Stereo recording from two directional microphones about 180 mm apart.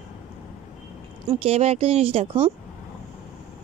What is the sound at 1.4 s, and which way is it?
A woman's voice, 35° right (ahead or behind).